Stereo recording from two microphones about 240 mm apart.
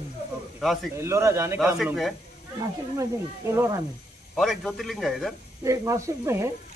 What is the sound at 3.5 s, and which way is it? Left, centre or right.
Speech, centre.